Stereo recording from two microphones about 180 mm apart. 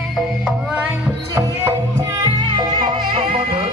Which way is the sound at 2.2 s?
25° right (ahead or behind).